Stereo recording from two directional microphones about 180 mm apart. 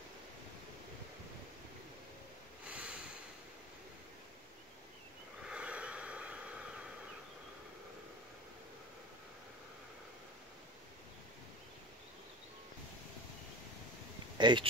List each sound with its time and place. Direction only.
2.7 s snort: 5° right (ahead or behind)
5.5 s snort: 5° right (ahead or behind)
14.4 s speech: 25° right (ahead or behind)